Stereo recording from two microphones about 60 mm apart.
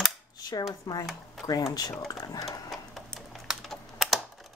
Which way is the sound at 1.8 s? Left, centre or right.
Left.